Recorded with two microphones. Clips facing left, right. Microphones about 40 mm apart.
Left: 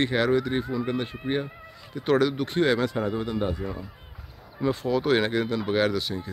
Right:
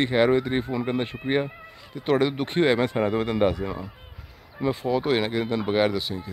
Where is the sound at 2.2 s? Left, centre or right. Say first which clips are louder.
Right 1 dB; right.